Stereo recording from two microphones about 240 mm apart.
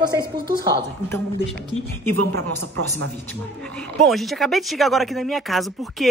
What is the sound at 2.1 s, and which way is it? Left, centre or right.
Speech, right.